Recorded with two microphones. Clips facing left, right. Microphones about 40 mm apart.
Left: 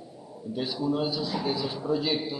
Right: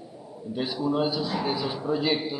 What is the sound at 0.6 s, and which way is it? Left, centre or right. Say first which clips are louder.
A man's voice: right 2 dB; centre.